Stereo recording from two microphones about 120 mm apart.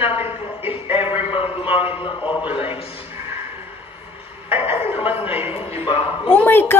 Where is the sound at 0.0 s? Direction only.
55° left (ahead or behind).